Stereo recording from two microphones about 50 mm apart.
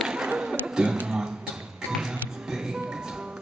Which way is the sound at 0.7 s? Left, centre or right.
Centre.